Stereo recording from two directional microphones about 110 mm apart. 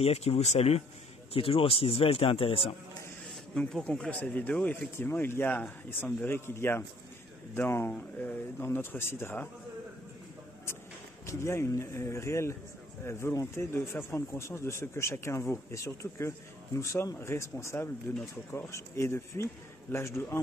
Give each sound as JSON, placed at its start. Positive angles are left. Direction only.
{"t": 0.0, "sound": "speech", "side_deg": 70}
{"t": 1.3, "sound": "speech", "side_deg": 55}
{"t": 3.5, "sound": "speech", "side_deg": 10}
{"t": 11.2, "sound": "speech", "side_deg": 25}